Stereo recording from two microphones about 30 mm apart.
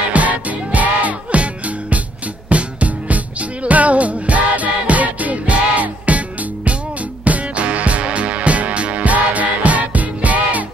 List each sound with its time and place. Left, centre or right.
0.1 s music: right